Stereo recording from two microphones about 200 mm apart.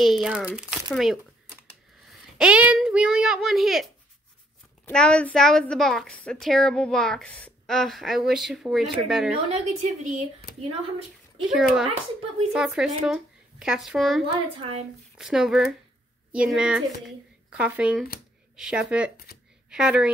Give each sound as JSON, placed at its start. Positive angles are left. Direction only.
{"t": 0.0, "sound": "a woman's voice", "side_deg": 0}
{"t": 2.3, "sound": "a woman's voice", "side_deg": -5}
{"t": 9.5, "sound": "a woman's voice", "side_deg": -35}
{"t": 11.4, "sound": "a woman's voice", "side_deg": 0}
{"t": 14.6, "sound": "a woman's voice", "side_deg": -30}
{"t": 15.1, "sound": "a woman's voice", "side_deg": 0}